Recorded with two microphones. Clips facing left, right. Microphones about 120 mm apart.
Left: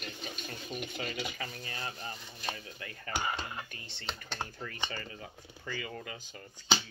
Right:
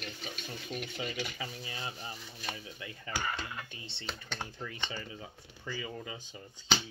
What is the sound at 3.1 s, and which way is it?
Speech, 25° left (ahead or behind).